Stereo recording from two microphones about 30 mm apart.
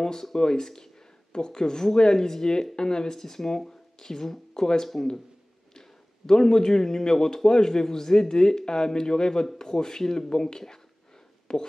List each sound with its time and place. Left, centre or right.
0.0 s speech: centre